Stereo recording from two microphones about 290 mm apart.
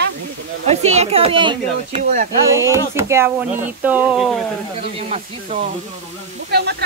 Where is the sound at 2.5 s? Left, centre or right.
Centre.